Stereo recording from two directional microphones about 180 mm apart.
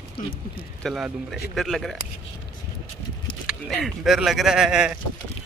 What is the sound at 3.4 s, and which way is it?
Speech, centre (ahead or behind).